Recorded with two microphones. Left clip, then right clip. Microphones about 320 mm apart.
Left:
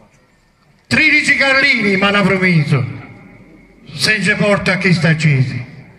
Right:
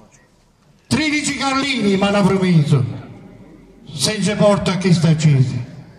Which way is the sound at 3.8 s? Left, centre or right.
Centre.